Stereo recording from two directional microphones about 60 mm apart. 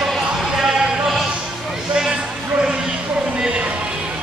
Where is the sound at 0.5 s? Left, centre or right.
Centre.